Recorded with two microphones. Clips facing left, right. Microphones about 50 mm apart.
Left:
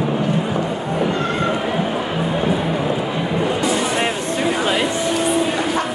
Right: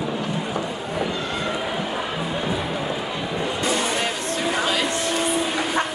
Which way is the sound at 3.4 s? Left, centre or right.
Left.